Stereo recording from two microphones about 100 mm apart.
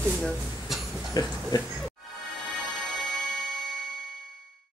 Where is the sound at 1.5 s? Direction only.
45° left (ahead or behind).